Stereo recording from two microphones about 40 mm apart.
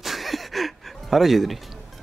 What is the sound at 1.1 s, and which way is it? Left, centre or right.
Speech, centre.